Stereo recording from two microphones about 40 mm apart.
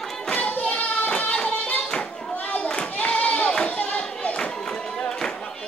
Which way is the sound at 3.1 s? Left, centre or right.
Left.